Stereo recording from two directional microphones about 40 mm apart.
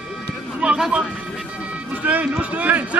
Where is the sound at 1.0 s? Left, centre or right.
Centre.